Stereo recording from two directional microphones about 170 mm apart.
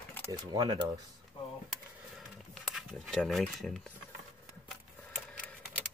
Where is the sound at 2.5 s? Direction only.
Centre (ahead or behind).